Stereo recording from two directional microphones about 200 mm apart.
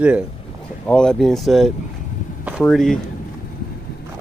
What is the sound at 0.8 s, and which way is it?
Speech, 5° left (ahead or behind).